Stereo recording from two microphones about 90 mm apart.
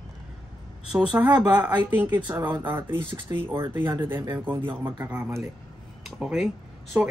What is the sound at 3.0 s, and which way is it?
Speech, 70° right (ahead or behind).